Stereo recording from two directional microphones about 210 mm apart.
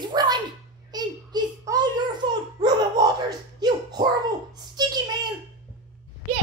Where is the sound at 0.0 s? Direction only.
20° right (ahead or behind).